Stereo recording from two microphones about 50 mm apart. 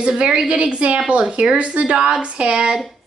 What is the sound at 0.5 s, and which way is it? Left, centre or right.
A woman's voice, right.